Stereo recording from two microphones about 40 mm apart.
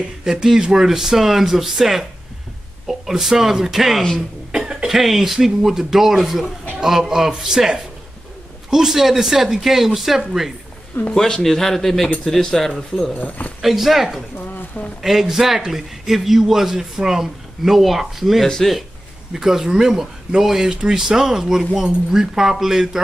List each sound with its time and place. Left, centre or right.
0.2 s a man's voice: centre
4.5 s cough: right
4.8 s a man's voice: centre
11.1 s speech: centre
13.1 s speech: left
13.6 s a man's voice: centre